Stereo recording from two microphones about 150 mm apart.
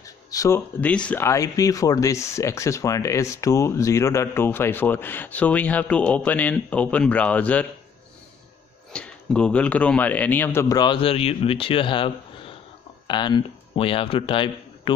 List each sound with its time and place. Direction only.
0.0 s a sound: 20° left (ahead or behind)
0.7 s speech: 10° left (ahead or behind)
8.9 s speech: 5° left (ahead or behind)
10.8 s speech: 35° left (ahead or behind)